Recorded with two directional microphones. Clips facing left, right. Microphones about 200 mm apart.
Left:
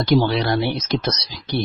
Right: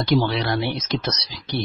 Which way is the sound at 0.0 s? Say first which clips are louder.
Left 3 dB; 40° left (ahead or behind).